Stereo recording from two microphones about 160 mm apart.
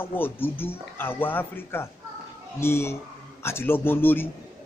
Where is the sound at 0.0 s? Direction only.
15° left (ahead or behind).